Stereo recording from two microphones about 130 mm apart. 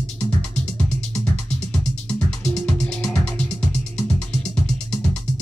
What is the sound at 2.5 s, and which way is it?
Music, 5° left (ahead or behind).